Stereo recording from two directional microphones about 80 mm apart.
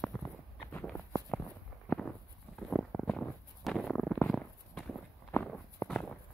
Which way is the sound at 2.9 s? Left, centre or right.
Centre.